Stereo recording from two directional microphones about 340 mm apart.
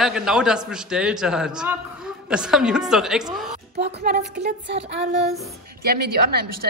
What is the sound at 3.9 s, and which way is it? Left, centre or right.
Speech, right.